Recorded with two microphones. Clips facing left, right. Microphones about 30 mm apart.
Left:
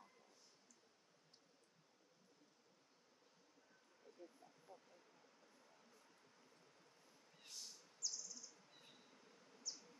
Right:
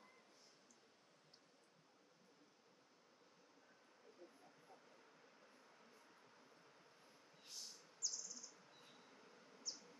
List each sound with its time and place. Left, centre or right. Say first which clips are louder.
4.2 s vehicle: left 3 dB; right
5.4 s a sound: right 3 dB; right
7.4 s bird: even; centre
8.0 s insect: even; centre